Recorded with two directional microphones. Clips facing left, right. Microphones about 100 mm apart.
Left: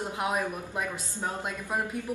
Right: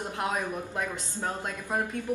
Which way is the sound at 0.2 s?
10° left (ahead or behind).